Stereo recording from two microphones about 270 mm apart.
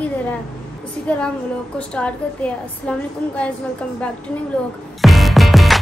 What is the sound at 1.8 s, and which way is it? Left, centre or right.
A woman's voice, centre.